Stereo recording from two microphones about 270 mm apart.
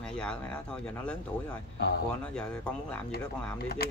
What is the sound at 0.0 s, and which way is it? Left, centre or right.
Speech, centre.